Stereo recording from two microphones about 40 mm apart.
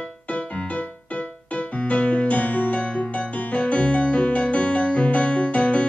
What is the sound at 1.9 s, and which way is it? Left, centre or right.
Music, left.